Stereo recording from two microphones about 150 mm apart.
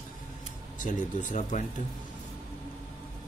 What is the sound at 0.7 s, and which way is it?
Speech, 55° left (ahead or behind).